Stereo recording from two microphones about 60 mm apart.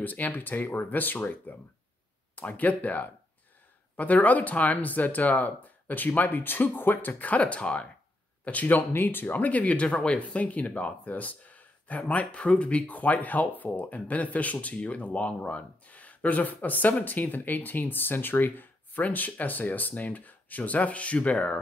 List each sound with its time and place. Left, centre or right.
0.0 s speech: left